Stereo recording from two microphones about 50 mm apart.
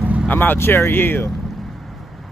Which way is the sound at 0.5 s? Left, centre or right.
Left.